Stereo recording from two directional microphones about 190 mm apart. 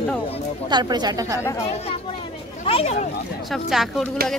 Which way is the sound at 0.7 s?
20° right (ahead or behind).